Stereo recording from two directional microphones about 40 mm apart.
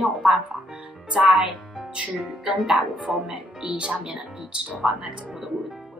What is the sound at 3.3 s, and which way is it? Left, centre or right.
Speech, centre.